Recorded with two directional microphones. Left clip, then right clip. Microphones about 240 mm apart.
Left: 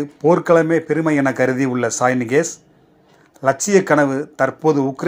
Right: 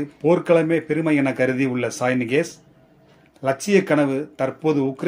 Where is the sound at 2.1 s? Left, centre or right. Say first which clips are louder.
Left 3 dB; left.